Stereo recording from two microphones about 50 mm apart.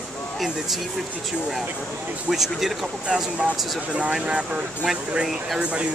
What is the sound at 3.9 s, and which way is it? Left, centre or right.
Speech, right.